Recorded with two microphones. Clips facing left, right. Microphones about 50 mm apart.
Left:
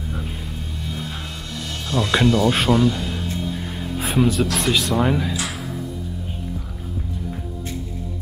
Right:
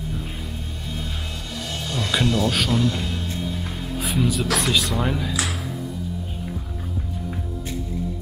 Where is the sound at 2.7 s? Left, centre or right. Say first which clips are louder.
Left 4 dB; centre.